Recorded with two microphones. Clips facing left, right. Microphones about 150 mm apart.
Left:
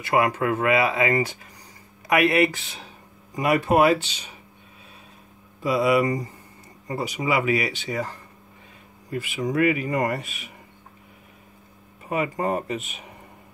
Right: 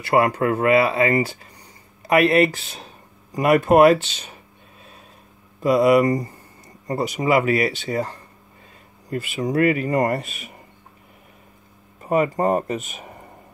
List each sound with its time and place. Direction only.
0.1 s speech: 35° right (ahead or behind)
3.3 s speech: 50° right (ahead or behind)
5.6 s speech: 50° right (ahead or behind)
12.0 s speech: 40° right (ahead or behind)